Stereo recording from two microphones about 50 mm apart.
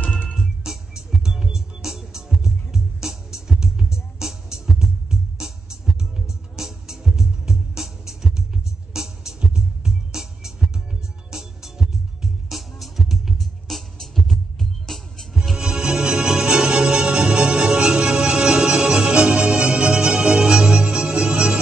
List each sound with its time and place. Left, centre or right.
0.7 s music: centre
15.5 s music: centre